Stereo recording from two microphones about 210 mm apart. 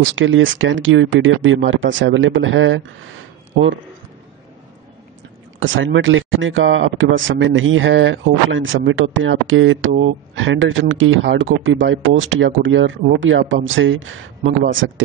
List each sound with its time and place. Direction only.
0.0 s speech: 65° right (ahead or behind)
5.6 s speech: 65° right (ahead or behind)